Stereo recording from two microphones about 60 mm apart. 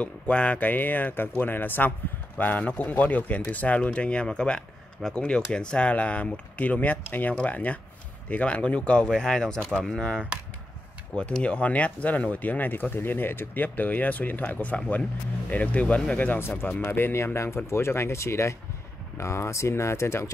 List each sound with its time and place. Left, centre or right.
0.0 s speech: left
16.9 s speech: left